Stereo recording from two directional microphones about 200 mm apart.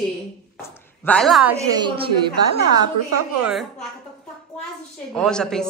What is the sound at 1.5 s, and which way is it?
Speech, 20° right (ahead or behind).